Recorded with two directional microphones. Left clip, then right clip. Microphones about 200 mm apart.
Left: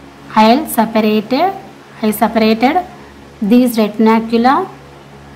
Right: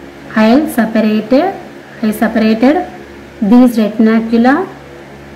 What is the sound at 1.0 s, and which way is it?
A woman's voice, 50° left (ahead or behind).